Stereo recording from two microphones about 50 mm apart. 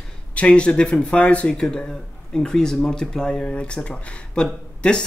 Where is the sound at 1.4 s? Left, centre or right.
Centre.